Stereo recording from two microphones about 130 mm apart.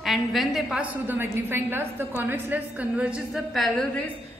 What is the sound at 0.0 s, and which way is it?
A woman's voice, centre (ahead or behind).